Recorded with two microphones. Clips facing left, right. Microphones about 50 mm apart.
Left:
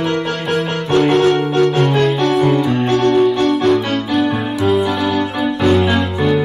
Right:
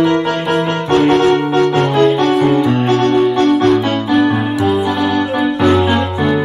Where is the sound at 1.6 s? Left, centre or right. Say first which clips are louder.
Right 1 dB; right.